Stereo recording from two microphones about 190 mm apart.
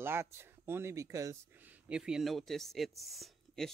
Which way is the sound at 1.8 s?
5° right (ahead or behind).